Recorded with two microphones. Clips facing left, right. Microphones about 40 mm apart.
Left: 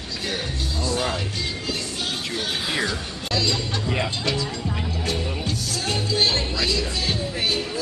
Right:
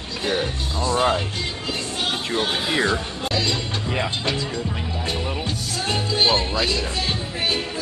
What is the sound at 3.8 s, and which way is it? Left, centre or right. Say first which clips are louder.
Speech: right 1 dB; centre.